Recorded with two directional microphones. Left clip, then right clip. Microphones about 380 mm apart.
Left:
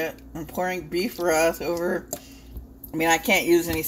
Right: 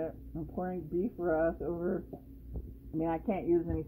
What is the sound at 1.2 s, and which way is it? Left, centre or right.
Speech, centre.